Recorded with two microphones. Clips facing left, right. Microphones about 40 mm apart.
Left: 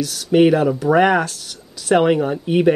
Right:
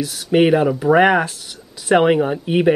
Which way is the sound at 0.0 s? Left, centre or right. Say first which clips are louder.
Left 1 dB; centre.